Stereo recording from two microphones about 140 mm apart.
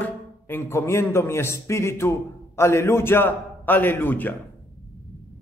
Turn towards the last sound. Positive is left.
turn(degrees=15)  # may be behind; listen again after turning